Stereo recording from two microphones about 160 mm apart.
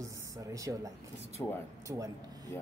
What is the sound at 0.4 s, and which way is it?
Speech, 20° right (ahead or behind).